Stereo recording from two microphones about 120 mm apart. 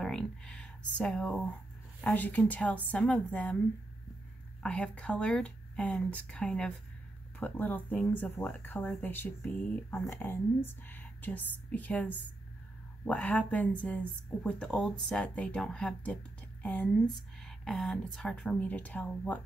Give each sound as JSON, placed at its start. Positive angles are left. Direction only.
{"t": 0.0, "sound": "speech", "side_deg": 5}
{"t": 4.6, "sound": "speech", "side_deg": 10}